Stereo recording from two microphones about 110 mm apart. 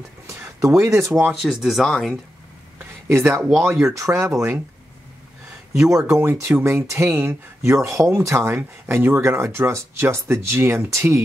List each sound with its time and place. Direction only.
0.3 s speech: 25° right (ahead or behind)
1.4 s speech: 5° right (ahead or behind)
2.8 s a sound: 20° right (ahead or behind)
3.8 s speech: 30° right (ahead or behind)
5.9 s speech: 30° right (ahead or behind)